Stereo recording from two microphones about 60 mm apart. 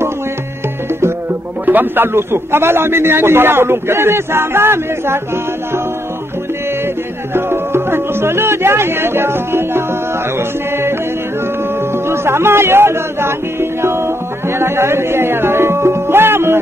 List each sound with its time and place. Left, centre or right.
1.7 s a man's voice: right
7.3 s music: right
12.1 s speech: right